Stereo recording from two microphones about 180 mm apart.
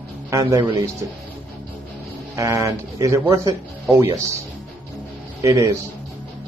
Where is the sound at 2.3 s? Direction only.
15° right (ahead or behind).